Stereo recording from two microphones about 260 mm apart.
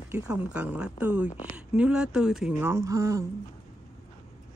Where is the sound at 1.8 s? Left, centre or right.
Centre.